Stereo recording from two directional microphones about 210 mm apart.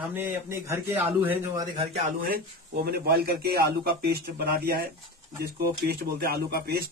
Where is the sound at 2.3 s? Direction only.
50° right (ahead or behind).